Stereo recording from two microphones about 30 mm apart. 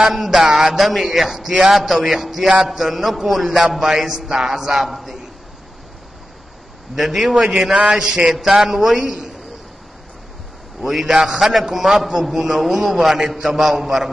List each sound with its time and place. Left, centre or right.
0.1 s a man's voice: centre
7.0 s a man's voice: centre
7.7 s a sound: right
8.3 s a man's voice: centre
10.8 s a man's voice: centre